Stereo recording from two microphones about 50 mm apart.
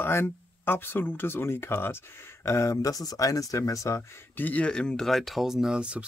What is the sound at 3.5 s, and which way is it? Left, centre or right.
Speech, left.